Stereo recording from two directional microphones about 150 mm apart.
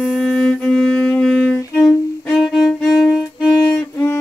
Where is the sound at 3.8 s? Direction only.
15° left (ahead or behind).